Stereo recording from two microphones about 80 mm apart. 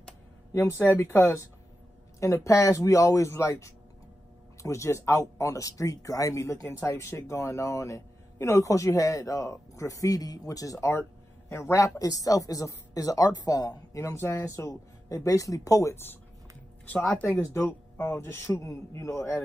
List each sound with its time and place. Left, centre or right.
0.6 s a man's voice: left
10.9 s a sound: left
11.8 s a woman's voice: left
17.4 s a man's voice: left